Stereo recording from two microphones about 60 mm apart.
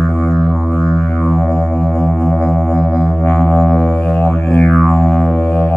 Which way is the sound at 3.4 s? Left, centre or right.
Centre.